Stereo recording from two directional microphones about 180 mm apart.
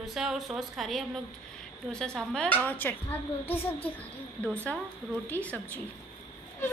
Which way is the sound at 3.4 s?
35° left (ahead or behind).